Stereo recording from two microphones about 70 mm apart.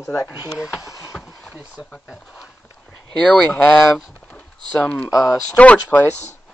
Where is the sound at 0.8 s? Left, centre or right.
Left.